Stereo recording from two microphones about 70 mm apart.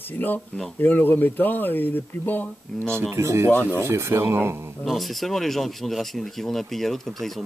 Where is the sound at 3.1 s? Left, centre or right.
Right.